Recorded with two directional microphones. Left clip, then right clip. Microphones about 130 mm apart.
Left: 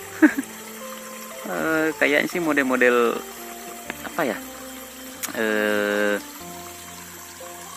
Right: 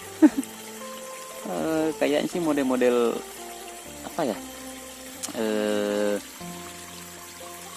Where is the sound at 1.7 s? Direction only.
15° right (ahead or behind).